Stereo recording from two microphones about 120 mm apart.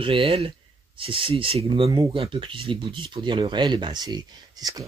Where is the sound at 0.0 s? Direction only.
50° right (ahead or behind).